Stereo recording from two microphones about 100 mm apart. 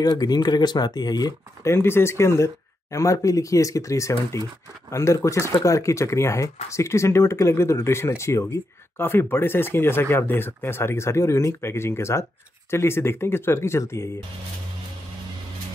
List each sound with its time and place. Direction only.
0.0 s speech: 40° left (ahead or behind)
1.6 s speech: 25° left (ahead or behind)